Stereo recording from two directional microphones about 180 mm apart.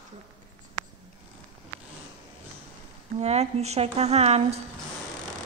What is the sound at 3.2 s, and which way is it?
A woman's voice, 35° right (ahead or behind).